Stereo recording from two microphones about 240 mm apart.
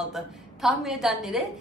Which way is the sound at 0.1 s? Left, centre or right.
Centre.